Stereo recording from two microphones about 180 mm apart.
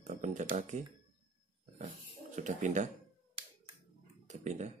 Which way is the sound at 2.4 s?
40° right (ahead or behind).